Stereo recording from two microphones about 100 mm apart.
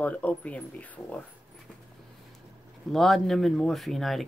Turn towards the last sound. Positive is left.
turn(degrees=0)  # may be behind; listen again after turning